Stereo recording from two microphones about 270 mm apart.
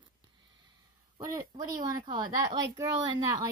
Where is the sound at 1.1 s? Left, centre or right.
Centre.